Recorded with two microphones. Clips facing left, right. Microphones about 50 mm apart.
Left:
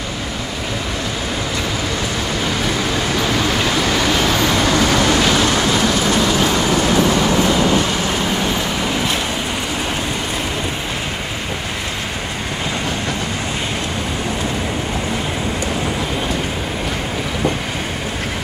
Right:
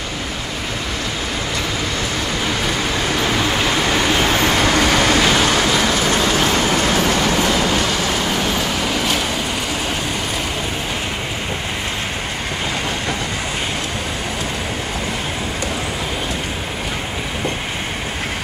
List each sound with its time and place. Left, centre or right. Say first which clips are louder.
2.4 s vehicle: left 1 dB; centre
4.3 s vehicle: even; right
6.2 s vehicle: even; right
7.0 s train: left 2 dB; right
7.7 s train: left 1 dB; centre
8.5 s vehicle: even; centre